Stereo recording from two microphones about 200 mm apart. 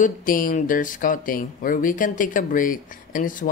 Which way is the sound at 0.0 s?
45° left (ahead or behind).